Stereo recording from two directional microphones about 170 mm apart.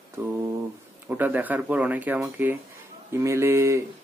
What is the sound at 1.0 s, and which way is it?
Speech, 10° right (ahead or behind).